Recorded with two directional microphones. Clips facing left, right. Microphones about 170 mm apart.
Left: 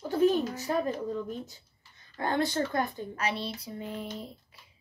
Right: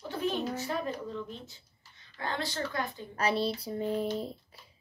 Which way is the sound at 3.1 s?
35° right (ahead or behind).